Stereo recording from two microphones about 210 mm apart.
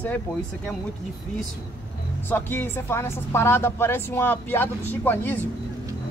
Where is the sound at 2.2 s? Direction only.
10° left (ahead or behind).